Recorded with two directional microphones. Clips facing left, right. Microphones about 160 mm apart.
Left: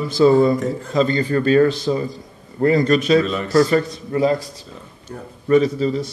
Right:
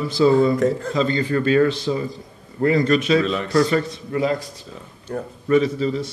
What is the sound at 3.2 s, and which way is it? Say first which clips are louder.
Speech: even; centre (ahead or behind).